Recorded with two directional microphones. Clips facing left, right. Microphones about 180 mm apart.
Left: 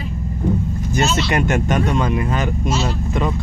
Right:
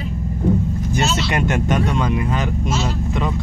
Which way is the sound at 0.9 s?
45° left (ahead or behind).